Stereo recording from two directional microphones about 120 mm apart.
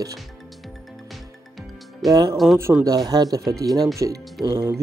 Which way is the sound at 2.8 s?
30° right (ahead or behind).